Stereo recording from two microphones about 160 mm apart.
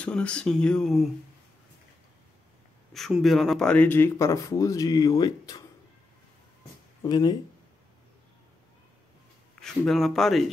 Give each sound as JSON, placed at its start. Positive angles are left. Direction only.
{"t": 0.0, "sound": "speech", "side_deg": 5}
{"t": 2.9, "sound": "speech", "side_deg": 0}
{"t": 7.0, "sound": "speech", "side_deg": 25}
{"t": 9.6, "sound": "speech", "side_deg": 0}